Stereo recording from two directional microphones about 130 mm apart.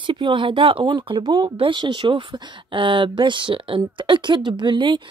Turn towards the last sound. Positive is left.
turn(degrees=-35)  # may be behind; listen again after turning